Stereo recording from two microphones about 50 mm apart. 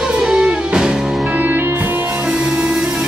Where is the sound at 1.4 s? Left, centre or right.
Right.